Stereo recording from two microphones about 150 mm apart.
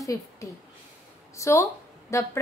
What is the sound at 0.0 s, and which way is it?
A woman's voice, 20° left (ahead or behind).